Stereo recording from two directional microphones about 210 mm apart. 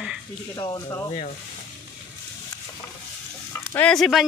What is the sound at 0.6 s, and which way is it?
Speech, 20° left (ahead or behind).